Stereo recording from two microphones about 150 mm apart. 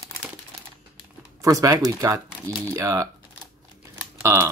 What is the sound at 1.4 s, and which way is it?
Speech, 20° right (ahead or behind).